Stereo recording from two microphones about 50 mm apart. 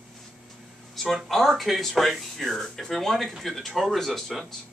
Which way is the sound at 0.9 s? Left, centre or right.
Centre.